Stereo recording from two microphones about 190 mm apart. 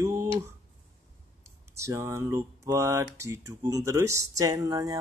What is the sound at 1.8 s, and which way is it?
Speech, 15° right (ahead or behind).